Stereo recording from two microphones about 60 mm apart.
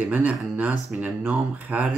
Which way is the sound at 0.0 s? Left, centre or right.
Right.